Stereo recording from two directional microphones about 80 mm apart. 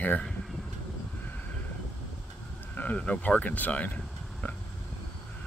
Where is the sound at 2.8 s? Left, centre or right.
Centre.